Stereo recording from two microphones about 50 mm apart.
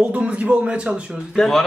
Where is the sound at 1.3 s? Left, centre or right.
Centre.